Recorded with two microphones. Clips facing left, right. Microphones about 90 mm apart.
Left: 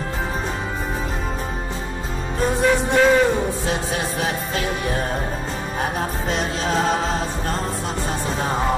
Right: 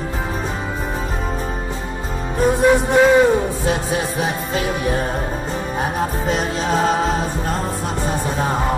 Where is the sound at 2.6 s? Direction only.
10° right (ahead or behind).